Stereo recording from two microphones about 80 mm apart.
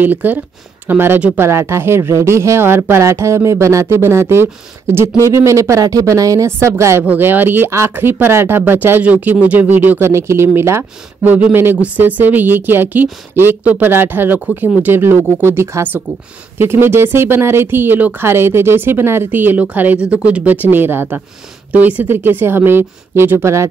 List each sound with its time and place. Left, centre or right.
0.0 s speech: right
7.1 s speech: right
11.2 s speech: centre; by 23.7 s right